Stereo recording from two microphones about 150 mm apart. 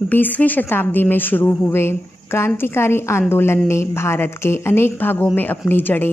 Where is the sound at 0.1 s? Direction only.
10° left (ahead or behind).